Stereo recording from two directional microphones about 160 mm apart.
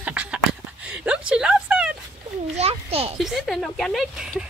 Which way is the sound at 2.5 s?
40° right (ahead or behind).